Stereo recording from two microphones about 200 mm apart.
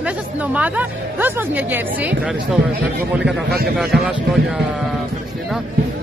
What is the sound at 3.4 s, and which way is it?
Speech, 55° right (ahead or behind).